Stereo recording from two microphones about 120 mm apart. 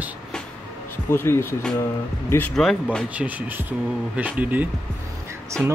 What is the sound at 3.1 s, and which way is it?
Speech, 10° right (ahead or behind).